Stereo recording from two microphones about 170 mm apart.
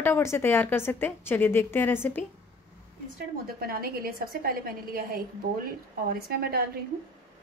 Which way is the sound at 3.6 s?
60° right (ahead or behind).